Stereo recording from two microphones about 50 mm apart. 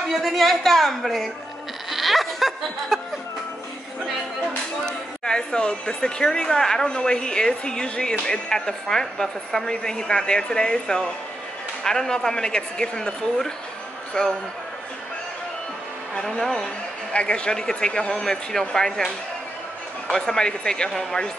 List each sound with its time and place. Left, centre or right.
0.1 s a woman's voice: centre
1.9 s a sound: centre
4.8 s a man's voice: centre
16.2 s speech: centre
17.1 s speech: left
20.9 s a woman's voice: centre